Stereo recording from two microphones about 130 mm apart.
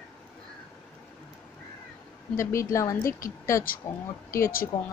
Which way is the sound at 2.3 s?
25° left (ahead or behind).